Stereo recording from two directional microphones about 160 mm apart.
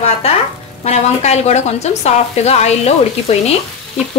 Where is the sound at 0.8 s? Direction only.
45° left (ahead or behind).